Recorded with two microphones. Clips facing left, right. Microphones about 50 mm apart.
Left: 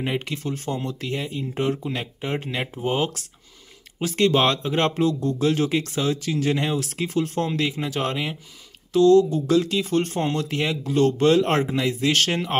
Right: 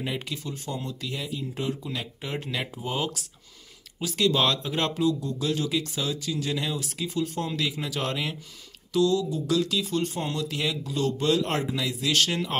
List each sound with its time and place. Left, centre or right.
0.2 s speech: left
0.8 s speech: left
2.8 s speech: left
6.8 s speech: left
7.4 s speech: left
8.9 s speech: left
9.5 s speech: left
9.8 s speech: left